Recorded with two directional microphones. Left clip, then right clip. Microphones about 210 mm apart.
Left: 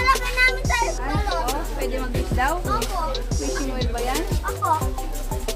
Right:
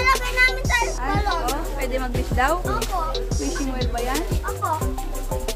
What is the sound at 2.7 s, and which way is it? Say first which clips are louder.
Music: even; centre (ahead or behind).